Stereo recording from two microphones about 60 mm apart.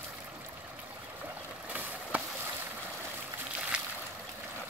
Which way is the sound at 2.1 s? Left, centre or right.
Right.